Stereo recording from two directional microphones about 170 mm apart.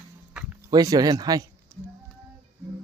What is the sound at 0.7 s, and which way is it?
Speech, 25° right (ahead or behind).